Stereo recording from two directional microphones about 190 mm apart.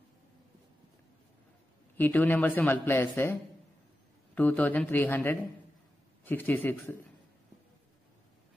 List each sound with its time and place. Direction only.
2.0 s speech: 10° left (ahead or behind)
4.4 s speech: 10° left (ahead or behind)